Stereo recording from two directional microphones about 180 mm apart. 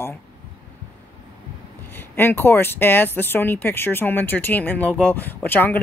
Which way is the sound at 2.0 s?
10° left (ahead or behind).